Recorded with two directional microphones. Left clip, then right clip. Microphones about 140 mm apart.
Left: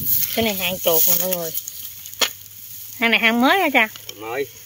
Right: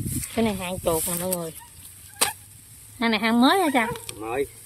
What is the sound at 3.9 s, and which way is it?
Speech, 45° right (ahead or behind).